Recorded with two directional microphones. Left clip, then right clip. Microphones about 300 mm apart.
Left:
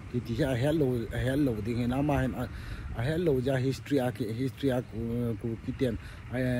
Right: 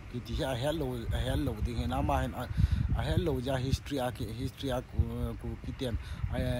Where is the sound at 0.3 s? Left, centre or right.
Centre.